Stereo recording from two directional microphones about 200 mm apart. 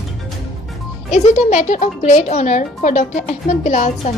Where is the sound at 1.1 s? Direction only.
35° left (ahead or behind).